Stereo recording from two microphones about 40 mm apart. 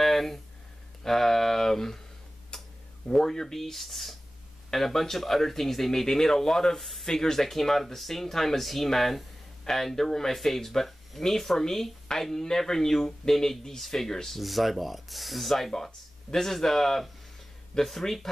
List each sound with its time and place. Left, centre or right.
0.0 s a sound: centre
1.0 s speech: centre
2.5 s tick-tock: centre
3.1 s speech: centre
6.8 s speech: centre
7.1 s speech: centre